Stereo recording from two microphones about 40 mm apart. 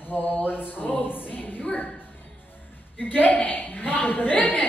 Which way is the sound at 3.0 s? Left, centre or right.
Left.